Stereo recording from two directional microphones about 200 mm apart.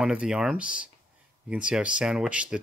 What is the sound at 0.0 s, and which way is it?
Speech, 5° right (ahead or behind).